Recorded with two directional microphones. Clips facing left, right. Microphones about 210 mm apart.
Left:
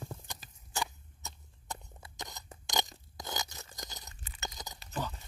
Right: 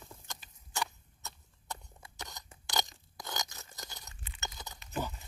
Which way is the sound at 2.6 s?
10° left (ahead or behind).